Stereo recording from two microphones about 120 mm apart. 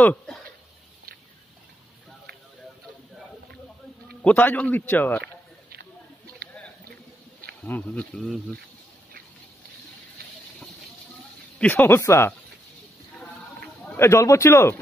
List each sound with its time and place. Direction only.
4.2 s a man's voice: 15° left (ahead or behind)
7.6 s a man's voice: 15° left (ahead or behind)
11.5 s a man's voice: 15° left (ahead or behind)
13.9 s speech: 20° left (ahead or behind)